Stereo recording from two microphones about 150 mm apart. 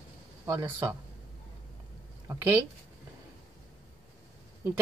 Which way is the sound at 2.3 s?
15° right (ahead or behind).